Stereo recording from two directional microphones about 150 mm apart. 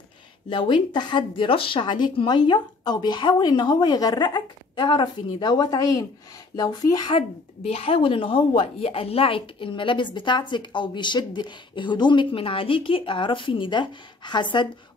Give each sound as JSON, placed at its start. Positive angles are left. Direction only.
{"t": 0.5, "sound": "speech", "side_deg": 30}